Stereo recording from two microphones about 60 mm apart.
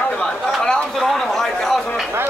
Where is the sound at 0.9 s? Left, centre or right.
Centre.